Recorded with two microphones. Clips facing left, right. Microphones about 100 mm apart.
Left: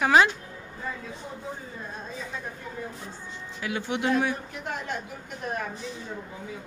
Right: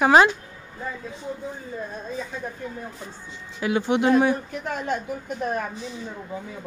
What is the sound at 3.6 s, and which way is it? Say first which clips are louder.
Speech: right 8 dB; 25° right (ahead or behind).